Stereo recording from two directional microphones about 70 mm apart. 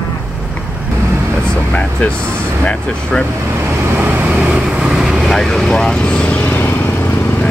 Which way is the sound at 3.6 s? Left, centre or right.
Right.